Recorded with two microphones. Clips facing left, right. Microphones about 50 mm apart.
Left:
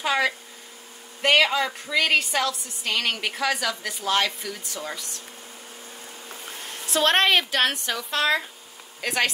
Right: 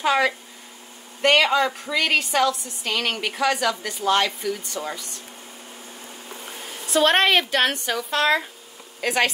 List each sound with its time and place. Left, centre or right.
0.0 s a woman's voice: centre
6.4 s a woman's voice: centre